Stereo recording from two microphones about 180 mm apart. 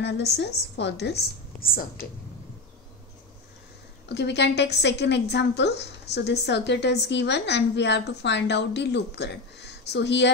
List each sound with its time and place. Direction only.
0.0 s a woman's voice: 70° left (ahead or behind)
4.1 s a woman's voice: 70° left (ahead or behind)